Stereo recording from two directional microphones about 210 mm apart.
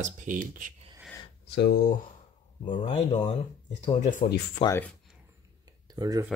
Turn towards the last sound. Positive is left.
turn(degrees=-15)  # may be behind; listen again after turning